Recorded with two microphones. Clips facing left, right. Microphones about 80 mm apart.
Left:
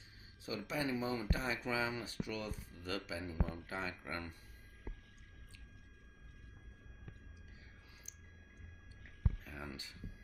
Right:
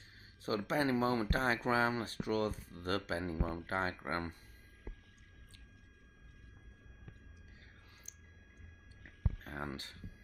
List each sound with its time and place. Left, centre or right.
0.7 s speech: right
9.4 s speech: right